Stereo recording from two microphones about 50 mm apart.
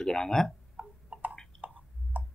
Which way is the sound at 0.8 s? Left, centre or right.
Right.